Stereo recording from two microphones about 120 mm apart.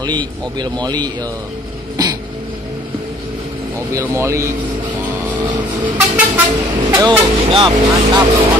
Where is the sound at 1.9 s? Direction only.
35° right (ahead or behind).